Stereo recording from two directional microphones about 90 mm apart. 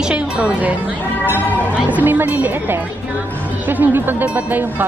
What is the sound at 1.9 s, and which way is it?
Speech, 20° right (ahead or behind).